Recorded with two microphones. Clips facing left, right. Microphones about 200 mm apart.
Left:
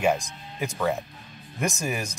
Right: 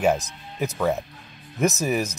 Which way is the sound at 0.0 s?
5° right (ahead or behind).